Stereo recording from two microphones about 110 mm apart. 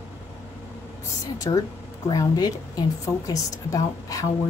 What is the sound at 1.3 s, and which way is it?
A woman's voice, 30° left (ahead or behind).